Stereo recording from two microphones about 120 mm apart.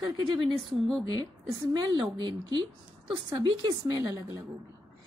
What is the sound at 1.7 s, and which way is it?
Speech, 40° right (ahead or behind).